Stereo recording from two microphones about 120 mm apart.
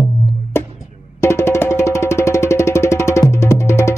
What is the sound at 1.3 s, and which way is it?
Music, 20° left (ahead or behind).